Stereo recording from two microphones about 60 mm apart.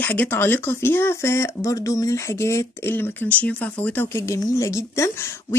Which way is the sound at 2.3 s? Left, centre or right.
Left.